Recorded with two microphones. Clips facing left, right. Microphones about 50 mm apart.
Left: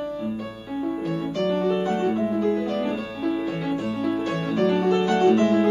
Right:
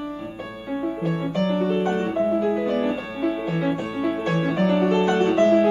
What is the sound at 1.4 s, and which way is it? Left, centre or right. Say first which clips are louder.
Music: even; centre.